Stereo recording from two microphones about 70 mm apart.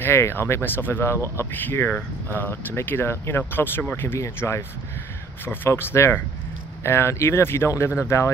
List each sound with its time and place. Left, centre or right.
0.0 s speech: left